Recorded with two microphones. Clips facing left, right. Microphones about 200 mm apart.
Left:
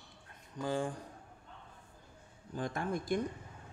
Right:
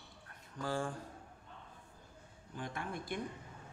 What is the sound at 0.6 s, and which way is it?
Speech, 20° left (ahead or behind).